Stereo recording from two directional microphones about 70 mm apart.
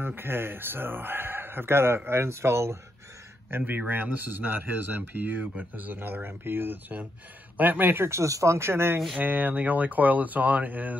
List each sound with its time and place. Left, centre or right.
0.0 s speech: right
5.4 s speech: centre
5.8 s speech: right
9.2 s speech: right